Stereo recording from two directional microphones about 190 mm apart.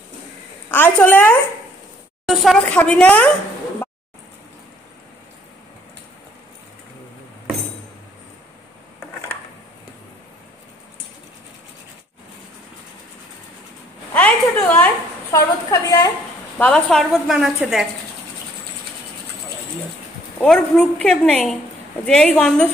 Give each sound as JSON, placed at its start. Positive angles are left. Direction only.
{"t": 0.7, "sound": "a woman's voice", "side_deg": 10}
{"t": 2.2, "sound": "a woman's voice", "side_deg": 0}
{"t": 14.1, "sound": "a sound", "side_deg": 10}
{"t": 16.5, "sound": "a woman's voice", "side_deg": 5}
{"t": 20.3, "sound": "a woman's voice", "side_deg": 5}